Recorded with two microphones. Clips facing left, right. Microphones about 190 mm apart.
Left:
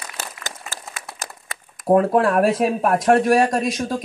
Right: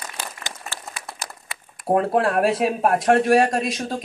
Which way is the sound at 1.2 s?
45° left (ahead or behind).